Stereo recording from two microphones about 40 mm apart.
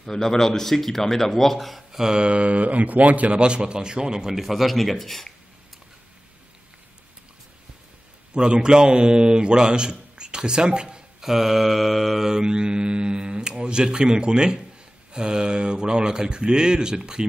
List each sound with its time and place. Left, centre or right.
0.0 s speech: centre
1.9 s speech: centre
8.4 s a man's voice: right
11.2 s mantra: centre
12.3 s speech: centre